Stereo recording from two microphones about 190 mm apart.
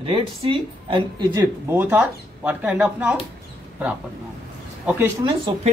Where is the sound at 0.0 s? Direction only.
30° right (ahead or behind).